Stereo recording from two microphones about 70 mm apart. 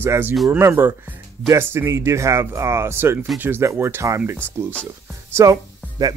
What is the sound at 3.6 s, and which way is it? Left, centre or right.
Speech, right.